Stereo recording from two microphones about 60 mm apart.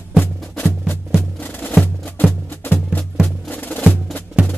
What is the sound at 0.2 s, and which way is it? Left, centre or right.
Music, left.